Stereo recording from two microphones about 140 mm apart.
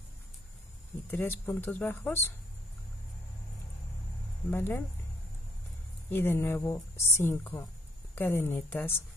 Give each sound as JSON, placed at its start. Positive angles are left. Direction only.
{"t": 1.1, "sound": "speech", "side_deg": 15}
{"t": 4.5, "sound": "speech", "side_deg": 15}
{"t": 6.0, "sound": "speech", "side_deg": 15}